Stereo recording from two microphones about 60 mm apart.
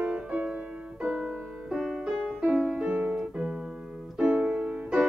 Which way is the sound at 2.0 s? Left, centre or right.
Centre.